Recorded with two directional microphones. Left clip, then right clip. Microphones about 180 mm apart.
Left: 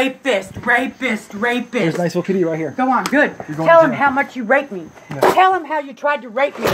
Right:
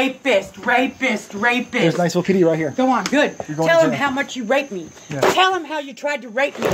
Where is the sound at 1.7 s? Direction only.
15° right (ahead or behind).